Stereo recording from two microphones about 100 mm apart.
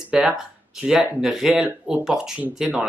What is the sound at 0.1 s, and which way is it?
Speech, 5° right (ahead or behind).